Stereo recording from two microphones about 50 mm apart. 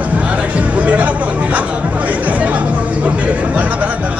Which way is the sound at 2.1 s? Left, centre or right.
Right.